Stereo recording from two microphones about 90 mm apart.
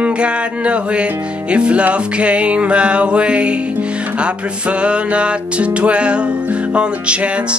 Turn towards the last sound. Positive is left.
turn(degrees=-10)  # may be behind; listen again after turning